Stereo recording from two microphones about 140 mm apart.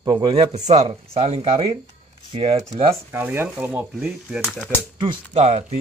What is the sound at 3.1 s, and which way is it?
Speech, 15° right (ahead or behind).